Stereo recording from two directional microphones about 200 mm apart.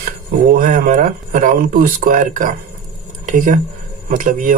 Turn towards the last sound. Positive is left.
turn(degrees=-40)  # may be behind; listen again after turning